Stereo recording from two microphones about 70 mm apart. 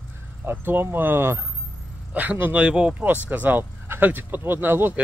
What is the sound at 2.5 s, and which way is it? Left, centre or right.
Speech, centre.